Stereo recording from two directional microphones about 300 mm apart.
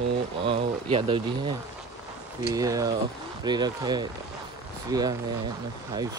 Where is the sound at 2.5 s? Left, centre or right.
Centre.